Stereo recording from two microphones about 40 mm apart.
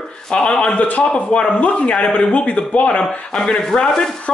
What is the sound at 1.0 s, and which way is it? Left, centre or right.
Speech, left.